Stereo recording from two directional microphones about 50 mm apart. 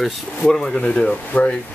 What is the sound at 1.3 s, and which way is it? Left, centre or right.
Speech, left.